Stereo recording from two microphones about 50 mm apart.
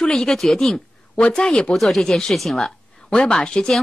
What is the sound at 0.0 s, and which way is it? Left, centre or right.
Speech, centre.